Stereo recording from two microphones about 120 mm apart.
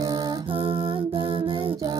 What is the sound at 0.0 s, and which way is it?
Music, 35° right (ahead or behind).